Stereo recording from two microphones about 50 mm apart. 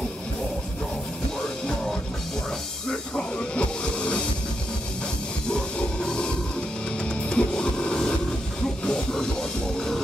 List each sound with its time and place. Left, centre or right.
2.9 s music: centre
5.5 s music: centre